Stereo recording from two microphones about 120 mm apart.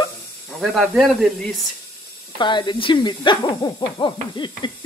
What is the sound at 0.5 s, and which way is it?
Speech, centre (ahead or behind).